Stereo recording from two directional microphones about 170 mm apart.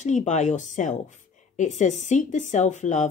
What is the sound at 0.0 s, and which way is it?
Speech, 45° left (ahead or behind).